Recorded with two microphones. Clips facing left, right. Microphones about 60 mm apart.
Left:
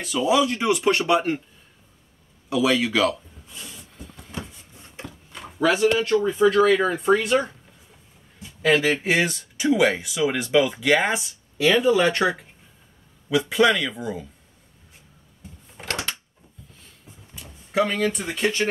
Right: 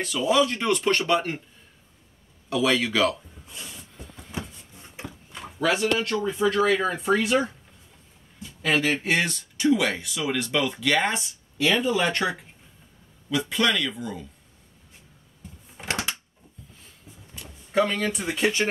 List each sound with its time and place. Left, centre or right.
0.0 s speech: centre
2.5 s speech: centre
3.6 s a sound: centre
4.8 s wood: centre
5.4 s speech: centre
13.5 s speech: centre
15.8 s a sound: centre
17.4 s speech: centre